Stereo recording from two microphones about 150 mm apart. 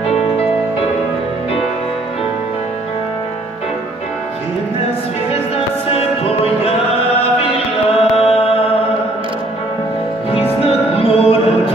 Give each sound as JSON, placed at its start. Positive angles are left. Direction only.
{"t": 5.9, "sound": "music", "side_deg": 40}
{"t": 7.2, "sound": "chant", "side_deg": 40}
{"t": 10.3, "sound": "music", "side_deg": 40}